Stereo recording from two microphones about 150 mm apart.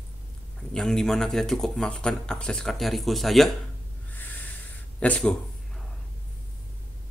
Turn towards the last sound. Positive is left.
turn(degrees=5)  # may be behind; listen again after turning